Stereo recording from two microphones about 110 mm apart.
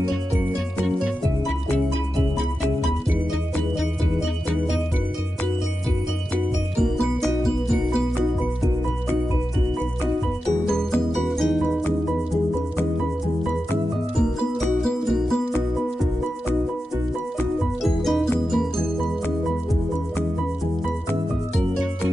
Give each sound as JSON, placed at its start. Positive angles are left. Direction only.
{"t": 11.1, "sound": "music", "side_deg": 0}
{"t": 14.8, "sound": "music", "side_deg": 5}
{"t": 17.8, "sound": "music", "side_deg": 0}